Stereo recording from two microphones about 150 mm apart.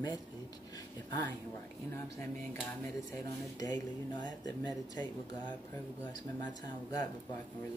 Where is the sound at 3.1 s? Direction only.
25° left (ahead or behind).